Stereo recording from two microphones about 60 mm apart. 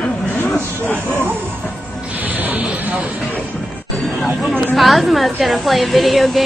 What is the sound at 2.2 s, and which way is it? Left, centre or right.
Snake, right.